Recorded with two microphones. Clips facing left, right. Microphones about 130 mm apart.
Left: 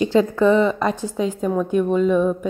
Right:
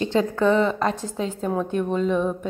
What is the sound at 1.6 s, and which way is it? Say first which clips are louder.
Speech: left 7 dB; 10° left (ahead or behind).